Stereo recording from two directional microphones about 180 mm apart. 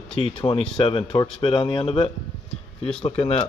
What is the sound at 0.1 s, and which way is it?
Speech, 30° left (ahead or behind).